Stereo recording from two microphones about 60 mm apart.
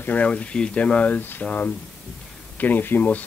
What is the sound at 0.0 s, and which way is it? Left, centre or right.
Speech, left.